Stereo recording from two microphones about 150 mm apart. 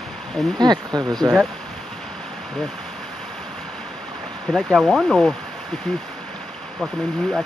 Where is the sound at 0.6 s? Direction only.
25° right (ahead or behind).